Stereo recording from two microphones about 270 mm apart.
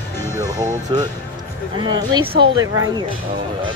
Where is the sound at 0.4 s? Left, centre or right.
Centre.